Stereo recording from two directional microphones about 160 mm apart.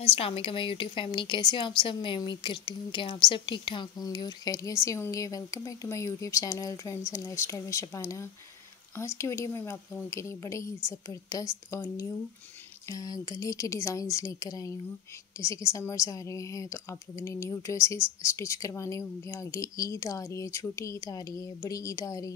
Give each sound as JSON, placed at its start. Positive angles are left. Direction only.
{"t": 0.0, "sound": "a woman's voice", "side_deg": 35}